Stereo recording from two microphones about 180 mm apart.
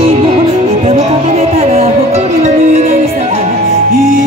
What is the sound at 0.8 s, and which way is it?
Music, 40° right (ahead or behind).